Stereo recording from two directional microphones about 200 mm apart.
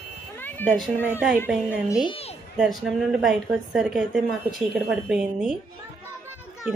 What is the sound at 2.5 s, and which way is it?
A woman's voice, centre (ahead or behind).